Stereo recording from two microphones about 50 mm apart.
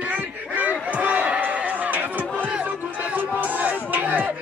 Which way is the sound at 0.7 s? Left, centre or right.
Right.